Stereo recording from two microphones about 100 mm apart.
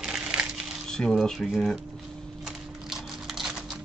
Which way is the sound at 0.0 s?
10° right (ahead or behind).